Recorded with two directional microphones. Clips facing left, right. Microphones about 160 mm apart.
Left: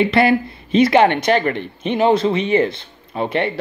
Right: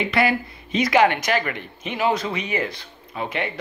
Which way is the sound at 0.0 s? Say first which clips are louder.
Left 6 dB; 30° left (ahead or behind).